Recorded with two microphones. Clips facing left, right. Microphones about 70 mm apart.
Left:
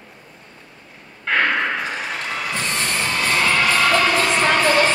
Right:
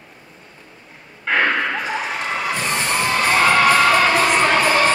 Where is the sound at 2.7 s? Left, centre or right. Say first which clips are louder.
Right 4 dB; right.